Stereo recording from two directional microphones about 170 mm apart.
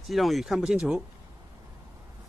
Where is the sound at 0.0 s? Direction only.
Centre (ahead or behind).